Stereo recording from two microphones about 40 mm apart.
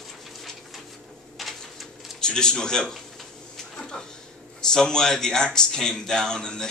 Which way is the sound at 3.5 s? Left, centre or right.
Centre.